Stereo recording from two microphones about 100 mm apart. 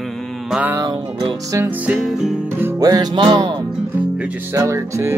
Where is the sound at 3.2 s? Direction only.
50° right (ahead or behind).